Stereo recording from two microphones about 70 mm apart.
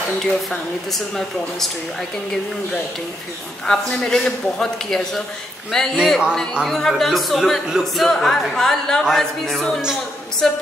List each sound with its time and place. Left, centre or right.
0.2 s speech: centre
3.6 s a man's voice: centre